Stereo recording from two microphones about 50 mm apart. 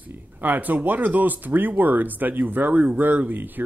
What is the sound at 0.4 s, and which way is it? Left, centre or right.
Speech, right.